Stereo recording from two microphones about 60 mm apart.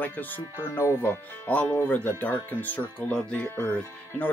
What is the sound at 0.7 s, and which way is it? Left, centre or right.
Speech, left.